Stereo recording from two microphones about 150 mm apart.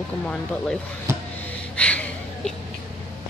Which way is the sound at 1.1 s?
15° right (ahead or behind).